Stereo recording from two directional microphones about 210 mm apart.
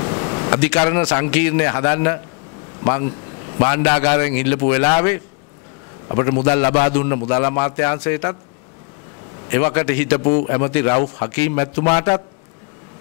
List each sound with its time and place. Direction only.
0.0 s air conditioning: 25° left (ahead or behind)
1.1 s a man's voice: 15° left (ahead or behind)
8.0 s speech: 10° left (ahead or behind)
9.5 s speech: 20° left (ahead or behind)
10.0 s a man's voice: 30° left (ahead or behind)